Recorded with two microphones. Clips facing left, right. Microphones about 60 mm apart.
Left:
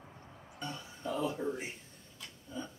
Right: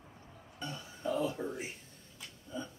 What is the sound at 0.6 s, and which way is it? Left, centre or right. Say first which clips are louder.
Speech: right 2 dB; centre.